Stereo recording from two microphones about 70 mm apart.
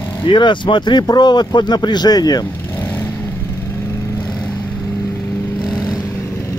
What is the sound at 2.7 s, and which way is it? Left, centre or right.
Vehicle, left.